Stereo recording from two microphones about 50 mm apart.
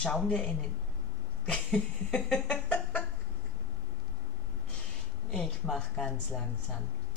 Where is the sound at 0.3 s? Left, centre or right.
Left.